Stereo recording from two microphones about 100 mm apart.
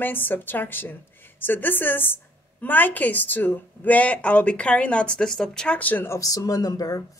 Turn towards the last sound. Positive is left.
turn(degrees=40)  # may be behind; listen again after turning